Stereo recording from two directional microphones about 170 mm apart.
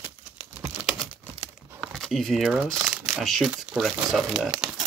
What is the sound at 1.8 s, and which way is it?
Speech, centre (ahead or behind).